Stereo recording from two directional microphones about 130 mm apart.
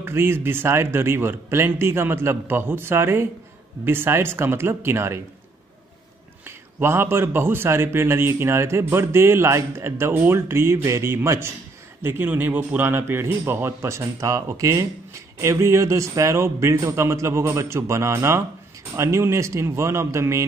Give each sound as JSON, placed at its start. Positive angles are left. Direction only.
{"t": 0.0, "sound": "a man's voice", "side_deg": -20}
{"t": 6.4, "sound": "a man's voice", "side_deg": -20}